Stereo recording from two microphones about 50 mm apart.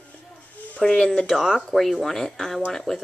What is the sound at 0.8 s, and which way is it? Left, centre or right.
Speech, centre.